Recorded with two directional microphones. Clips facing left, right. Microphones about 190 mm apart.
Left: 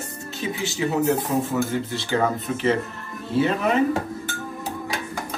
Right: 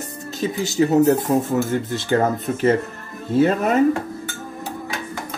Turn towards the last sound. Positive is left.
turn(degrees=-45)  # may be behind; listen again after turning